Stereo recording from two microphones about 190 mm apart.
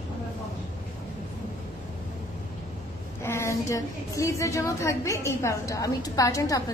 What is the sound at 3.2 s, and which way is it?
A woman's voice, 15° left (ahead or behind).